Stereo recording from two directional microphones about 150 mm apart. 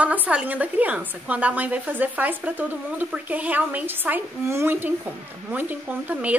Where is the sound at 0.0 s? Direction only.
10° right (ahead or behind).